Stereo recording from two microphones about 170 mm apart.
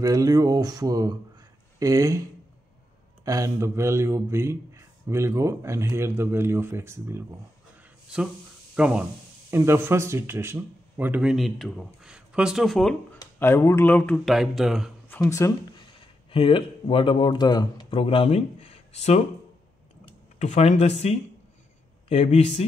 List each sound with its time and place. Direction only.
0.0 s speech: 20° right (ahead or behind)
3.3 s speech: 20° right (ahead or behind); by 13.2 s 5° left (ahead or behind)
13.2 s speech: 15° left (ahead or behind); by 14.9 s centre (ahead or behind)
15.0 s speech: 15° left (ahead or behind)
16.3 s speech: 30° left (ahead or behind)
20.3 s speech: 40° left (ahead or behind)